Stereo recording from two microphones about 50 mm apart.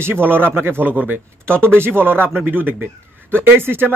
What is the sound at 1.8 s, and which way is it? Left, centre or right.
Speech, right.